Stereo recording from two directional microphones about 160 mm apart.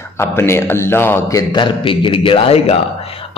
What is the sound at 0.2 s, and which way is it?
A man's voice, 15° left (ahead or behind).